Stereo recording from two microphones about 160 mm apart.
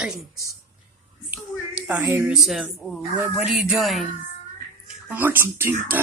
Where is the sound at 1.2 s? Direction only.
15° right (ahead or behind).